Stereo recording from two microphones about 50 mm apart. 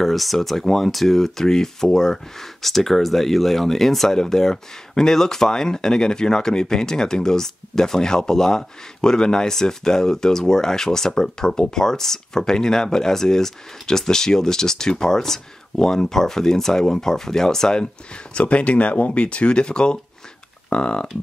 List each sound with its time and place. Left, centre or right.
0.0 s speech: centre
18.3 s speech: left